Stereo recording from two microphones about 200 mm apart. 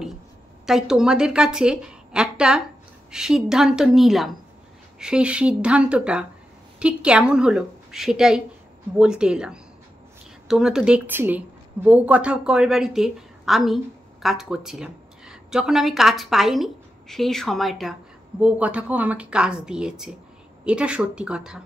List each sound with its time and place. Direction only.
0.7 s a woman's voice: 5° right (ahead or behind)